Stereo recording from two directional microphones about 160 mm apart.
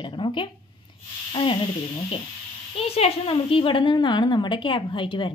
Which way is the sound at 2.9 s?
35° left (ahead or behind).